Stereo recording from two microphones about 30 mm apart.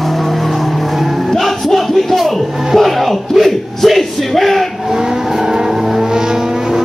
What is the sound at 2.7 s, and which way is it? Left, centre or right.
Music, centre.